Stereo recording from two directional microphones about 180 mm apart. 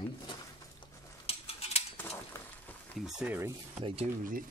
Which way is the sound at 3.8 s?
35° right (ahead or behind).